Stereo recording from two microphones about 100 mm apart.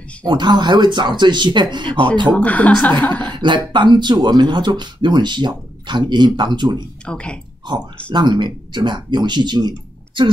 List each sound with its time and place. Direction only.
0.2 s speech: 50° right (ahead or behind)
2.2 s a woman's voice: 15° left (ahead or behind)
3.3 s speech: 50° right (ahead or behind)
7.1 s a woman's voice: 10° left (ahead or behind)
7.7 s speech: 45° right (ahead or behind)